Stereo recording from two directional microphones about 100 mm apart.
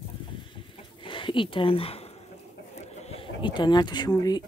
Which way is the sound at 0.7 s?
55° left (ahead or behind).